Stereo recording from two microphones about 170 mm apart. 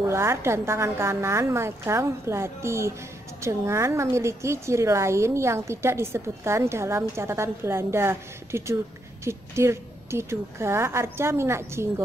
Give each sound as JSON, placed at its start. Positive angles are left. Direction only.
{"t": 0.1, "sound": "a woman's voice", "side_deg": -15}